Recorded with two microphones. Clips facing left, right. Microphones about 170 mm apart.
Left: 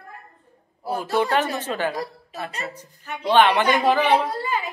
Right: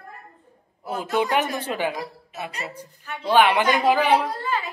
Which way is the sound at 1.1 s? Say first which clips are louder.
Left 1 dB; 15° right (ahead or behind).